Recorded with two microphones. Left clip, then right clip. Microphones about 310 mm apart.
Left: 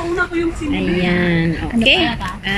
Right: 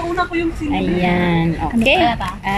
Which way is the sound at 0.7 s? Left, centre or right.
Right.